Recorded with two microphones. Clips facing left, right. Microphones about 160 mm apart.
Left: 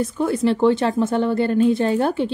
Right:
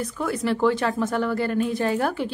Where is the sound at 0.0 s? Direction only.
25° left (ahead or behind).